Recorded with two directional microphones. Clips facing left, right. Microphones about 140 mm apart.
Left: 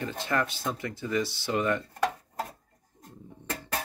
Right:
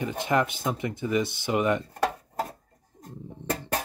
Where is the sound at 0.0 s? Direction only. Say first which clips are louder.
Right 4 dB; 15° right (ahead or behind).